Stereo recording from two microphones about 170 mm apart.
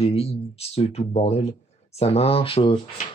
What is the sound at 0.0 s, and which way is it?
Speech, 35° left (ahead or behind).